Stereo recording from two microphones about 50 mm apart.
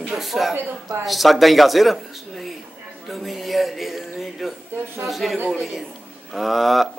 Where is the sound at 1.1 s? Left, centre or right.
Centre.